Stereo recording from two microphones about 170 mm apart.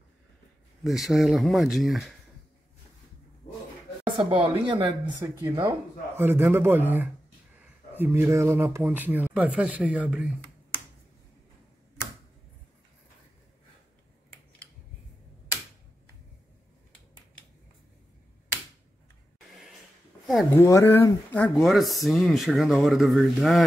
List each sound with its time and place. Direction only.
0.8 s speech: centre (ahead or behind)
4.0 s speech: 30° right (ahead or behind); by 10.3 s 5° right (ahead or behind)
20.5 s speech: 15° left (ahead or behind); by 23.6 s centre (ahead or behind)